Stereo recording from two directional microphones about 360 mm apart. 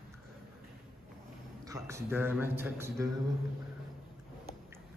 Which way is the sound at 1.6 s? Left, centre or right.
Centre.